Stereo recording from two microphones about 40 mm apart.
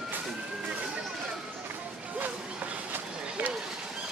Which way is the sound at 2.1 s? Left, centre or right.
Right.